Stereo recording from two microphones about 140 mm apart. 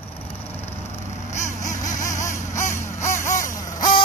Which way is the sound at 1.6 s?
60° left (ahead or behind).